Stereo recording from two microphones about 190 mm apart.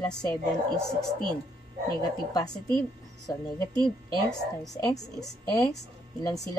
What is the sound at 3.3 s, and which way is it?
Speech, 15° left (ahead or behind).